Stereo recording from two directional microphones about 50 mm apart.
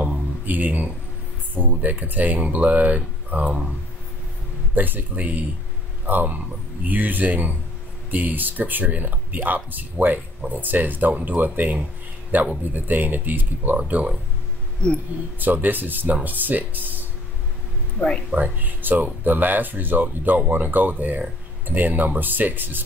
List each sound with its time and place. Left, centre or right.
0.5 s speech: right
4.7 s speech: right
15.3 s speech: right
17.9 s speech: centre
18.3 s speech: right